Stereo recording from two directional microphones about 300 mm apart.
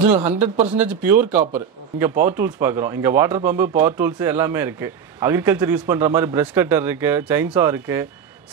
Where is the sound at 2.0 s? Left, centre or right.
Centre.